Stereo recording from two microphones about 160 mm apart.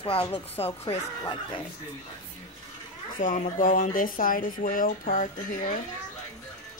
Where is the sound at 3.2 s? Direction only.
55° left (ahead or behind).